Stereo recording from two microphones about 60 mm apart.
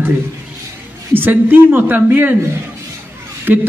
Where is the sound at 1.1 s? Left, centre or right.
Right.